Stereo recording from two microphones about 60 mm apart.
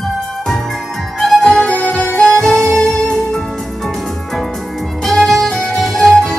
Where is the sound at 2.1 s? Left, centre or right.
Centre.